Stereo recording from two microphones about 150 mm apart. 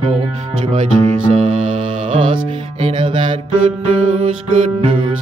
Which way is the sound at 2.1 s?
35° right (ahead or behind).